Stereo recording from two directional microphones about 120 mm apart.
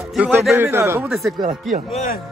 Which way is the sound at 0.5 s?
20° right (ahead or behind).